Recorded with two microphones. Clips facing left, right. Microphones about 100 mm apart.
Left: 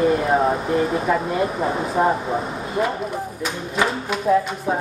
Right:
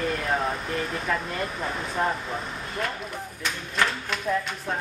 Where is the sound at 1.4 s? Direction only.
35° left (ahead or behind).